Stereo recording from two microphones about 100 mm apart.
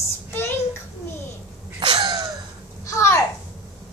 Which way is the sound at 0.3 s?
25° left (ahead or behind).